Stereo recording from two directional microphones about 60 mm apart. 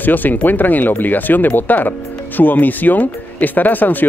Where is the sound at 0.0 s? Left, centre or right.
Left.